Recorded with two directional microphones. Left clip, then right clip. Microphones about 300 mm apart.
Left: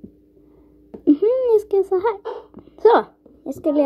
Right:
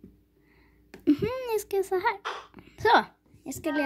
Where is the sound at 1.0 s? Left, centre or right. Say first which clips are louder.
Left 11 dB; right.